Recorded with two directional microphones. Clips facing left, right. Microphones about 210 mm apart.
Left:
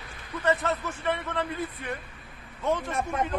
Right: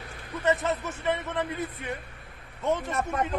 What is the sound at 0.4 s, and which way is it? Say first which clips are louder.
Speech: even; 20° right (ahead or behind).